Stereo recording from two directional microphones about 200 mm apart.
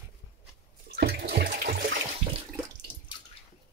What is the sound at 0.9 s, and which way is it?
Bathtub, 55° right (ahead or behind).